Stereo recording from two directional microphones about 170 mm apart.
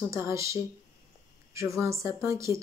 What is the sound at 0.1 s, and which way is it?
Speech, 15° right (ahead or behind).